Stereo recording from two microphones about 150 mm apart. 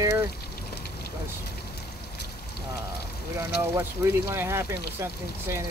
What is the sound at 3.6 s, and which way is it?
Speech, 15° right (ahead or behind).